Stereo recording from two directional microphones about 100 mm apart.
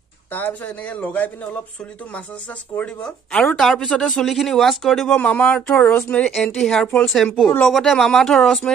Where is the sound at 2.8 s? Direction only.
10° left (ahead or behind).